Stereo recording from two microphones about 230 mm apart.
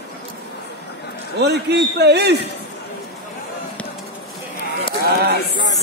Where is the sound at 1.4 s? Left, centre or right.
Right.